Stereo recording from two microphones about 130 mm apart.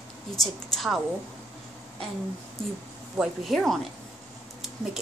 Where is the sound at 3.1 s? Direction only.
Centre (ahead or behind).